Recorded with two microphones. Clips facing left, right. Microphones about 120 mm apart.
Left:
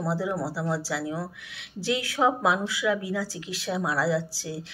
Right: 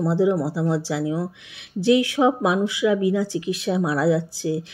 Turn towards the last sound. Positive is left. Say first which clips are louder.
# right 6 dB
turn(degrees=-25)  # may be behind; listen again after turning